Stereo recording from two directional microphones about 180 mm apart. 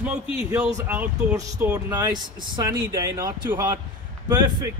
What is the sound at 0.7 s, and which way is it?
Speech, 10° right (ahead or behind).